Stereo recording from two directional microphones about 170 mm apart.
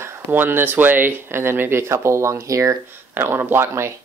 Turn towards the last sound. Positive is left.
turn(degrees=-15)  # may be behind; listen again after turning